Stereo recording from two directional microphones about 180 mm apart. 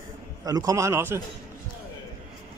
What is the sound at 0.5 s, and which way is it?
Speech, 20° right (ahead or behind).